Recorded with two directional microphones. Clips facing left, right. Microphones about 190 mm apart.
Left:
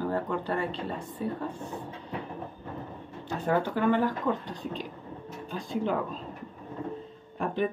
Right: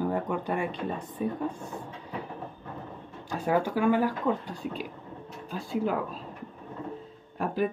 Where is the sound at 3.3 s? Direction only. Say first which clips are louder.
Right 1 dB; 10° right (ahead or behind).